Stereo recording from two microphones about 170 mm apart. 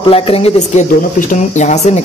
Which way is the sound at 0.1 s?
35° left (ahead or behind).